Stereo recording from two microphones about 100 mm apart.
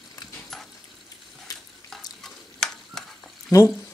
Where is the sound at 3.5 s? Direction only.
35° left (ahead or behind).